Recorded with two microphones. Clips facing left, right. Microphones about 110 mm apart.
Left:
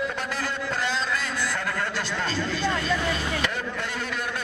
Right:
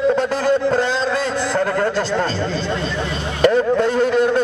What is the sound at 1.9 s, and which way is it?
Chatter, 35° right (ahead or behind).